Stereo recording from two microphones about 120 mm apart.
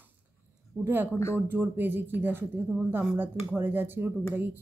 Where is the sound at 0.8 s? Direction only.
15° right (ahead or behind).